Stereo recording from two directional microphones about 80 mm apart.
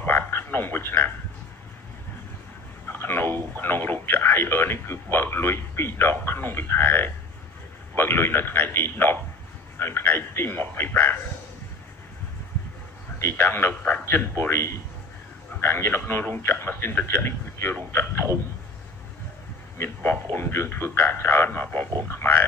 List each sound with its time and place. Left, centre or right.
0.0 s a sound: left
2.9 s speech: left
13.2 s speech: left
14.0 s a man's voice: left
15.6 s a man's voice: left
19.8 s a man's voice: left